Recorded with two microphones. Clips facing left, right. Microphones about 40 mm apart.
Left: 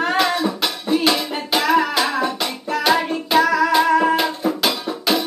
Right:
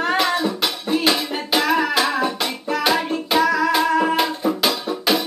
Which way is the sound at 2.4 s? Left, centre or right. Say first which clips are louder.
Even; centre.